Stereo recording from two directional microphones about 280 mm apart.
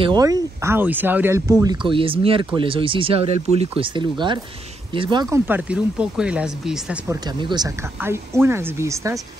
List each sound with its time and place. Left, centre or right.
0.0 s speech: centre
7.2 s speech: centre